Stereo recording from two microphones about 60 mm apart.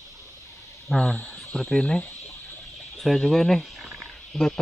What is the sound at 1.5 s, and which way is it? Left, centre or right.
Speech, centre.